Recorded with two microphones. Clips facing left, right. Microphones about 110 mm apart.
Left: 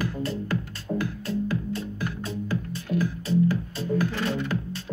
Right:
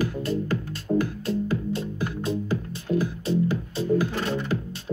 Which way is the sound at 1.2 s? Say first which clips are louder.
Right 2 dB; 25° right (ahead or behind).